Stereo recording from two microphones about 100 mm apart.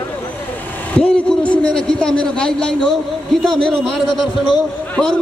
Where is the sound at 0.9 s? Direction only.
10° left (ahead or behind).